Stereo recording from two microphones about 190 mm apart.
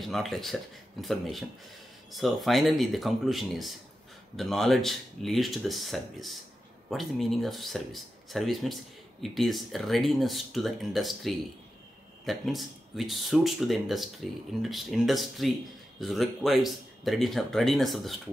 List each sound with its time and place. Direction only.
0.1 s speech: centre (ahead or behind)